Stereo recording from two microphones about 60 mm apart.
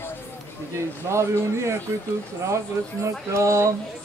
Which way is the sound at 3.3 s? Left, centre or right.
Right.